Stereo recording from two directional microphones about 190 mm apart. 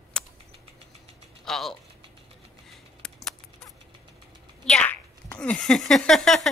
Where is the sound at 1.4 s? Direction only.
Centre (ahead or behind).